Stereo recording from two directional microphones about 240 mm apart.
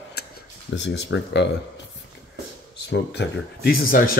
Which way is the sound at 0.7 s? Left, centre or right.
Left.